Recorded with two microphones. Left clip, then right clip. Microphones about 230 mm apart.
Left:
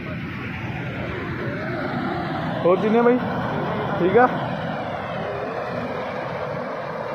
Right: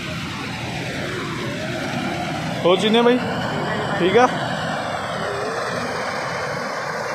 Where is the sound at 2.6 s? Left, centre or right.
Centre.